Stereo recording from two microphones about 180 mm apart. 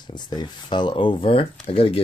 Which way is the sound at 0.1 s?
25° left (ahead or behind).